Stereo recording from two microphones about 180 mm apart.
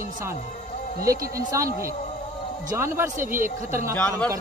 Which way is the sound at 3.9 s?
5° left (ahead or behind).